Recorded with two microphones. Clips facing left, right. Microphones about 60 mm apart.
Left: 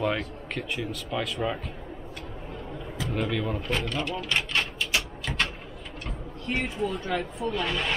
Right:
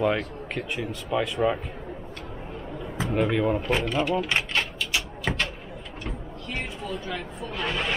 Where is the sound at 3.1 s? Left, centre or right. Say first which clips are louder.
Right 6 dB; centre.